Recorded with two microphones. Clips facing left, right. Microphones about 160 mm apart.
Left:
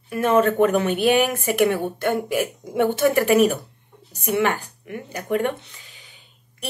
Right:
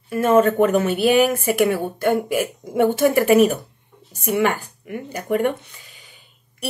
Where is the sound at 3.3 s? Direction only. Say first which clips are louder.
Right 3 dB; 50° right (ahead or behind).